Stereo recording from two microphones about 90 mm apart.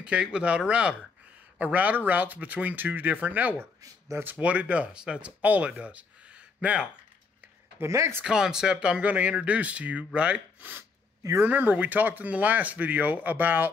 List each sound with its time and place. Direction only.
0.0 s speech: 10° right (ahead or behind)
7.8 s speech: 30° right (ahead or behind)
8.2 s speech: 10° right (ahead or behind)